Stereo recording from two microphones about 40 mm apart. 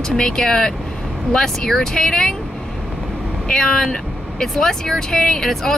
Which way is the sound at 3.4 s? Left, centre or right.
Centre.